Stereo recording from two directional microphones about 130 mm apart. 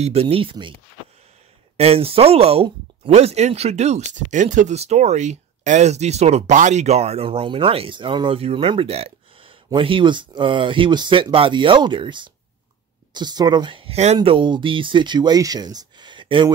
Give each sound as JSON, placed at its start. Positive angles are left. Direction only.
{"t": 0.0, "sound": "speech", "side_deg": -50}
{"t": 1.8, "sound": "speech", "side_deg": -50}
{"t": 13.9, "sound": "speech", "side_deg": -55}
{"t": 14.3, "sound": "speech", "side_deg": -40}